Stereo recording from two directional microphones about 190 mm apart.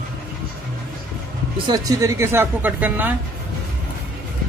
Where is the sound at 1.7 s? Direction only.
20° right (ahead or behind).